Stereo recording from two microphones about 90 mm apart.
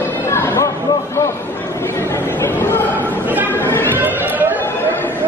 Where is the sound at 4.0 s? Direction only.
20° right (ahead or behind).